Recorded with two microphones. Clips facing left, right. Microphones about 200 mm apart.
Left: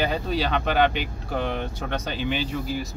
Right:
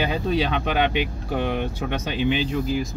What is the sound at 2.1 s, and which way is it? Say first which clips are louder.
Speech: right 6 dB; 40° left (ahead or behind).